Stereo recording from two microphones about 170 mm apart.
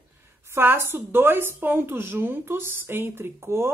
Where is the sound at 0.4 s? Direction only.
15° right (ahead or behind).